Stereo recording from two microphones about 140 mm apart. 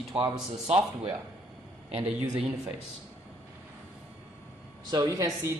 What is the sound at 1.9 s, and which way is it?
Speech, 10° right (ahead or behind).